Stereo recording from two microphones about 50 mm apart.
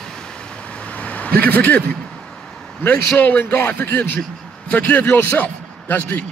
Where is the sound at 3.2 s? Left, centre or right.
Left.